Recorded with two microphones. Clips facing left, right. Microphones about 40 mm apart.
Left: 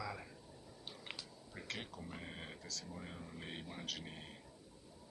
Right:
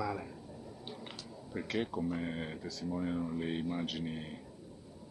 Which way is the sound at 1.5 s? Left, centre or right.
Centre.